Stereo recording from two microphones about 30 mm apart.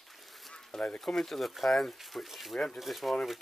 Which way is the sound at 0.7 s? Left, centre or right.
Left.